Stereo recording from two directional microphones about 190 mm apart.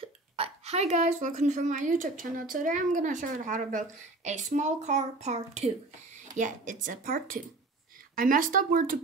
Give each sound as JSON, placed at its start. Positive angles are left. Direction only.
{"t": 0.4, "sound": "a woman's voice", "side_deg": -35}